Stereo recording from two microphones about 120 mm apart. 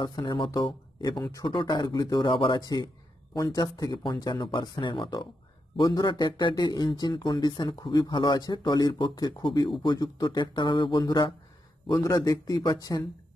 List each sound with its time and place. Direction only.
0.0 s speech: 40° left (ahead or behind)
1.2 s speech: 30° left (ahead or behind)
1.5 s speech: 45° left (ahead or behind)
1.8 s speech: 35° left (ahead or behind)
11.9 s speech: 30° left (ahead or behind)